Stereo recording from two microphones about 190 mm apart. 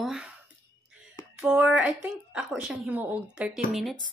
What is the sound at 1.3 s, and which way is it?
A woman's voice, 5° right (ahead or behind).